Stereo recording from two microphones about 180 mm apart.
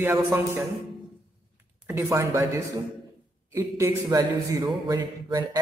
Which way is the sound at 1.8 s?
15° right (ahead or behind).